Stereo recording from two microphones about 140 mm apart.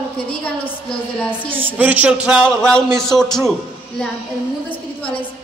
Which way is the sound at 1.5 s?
15° right (ahead or behind).